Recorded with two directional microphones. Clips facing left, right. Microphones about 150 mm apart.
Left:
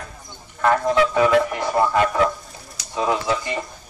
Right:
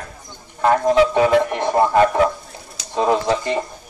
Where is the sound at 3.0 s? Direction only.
40° right (ahead or behind).